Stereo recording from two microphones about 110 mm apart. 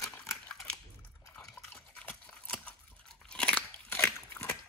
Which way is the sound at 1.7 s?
15° left (ahead or behind).